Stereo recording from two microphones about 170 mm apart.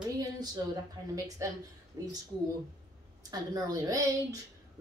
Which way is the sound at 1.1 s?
20° right (ahead or behind).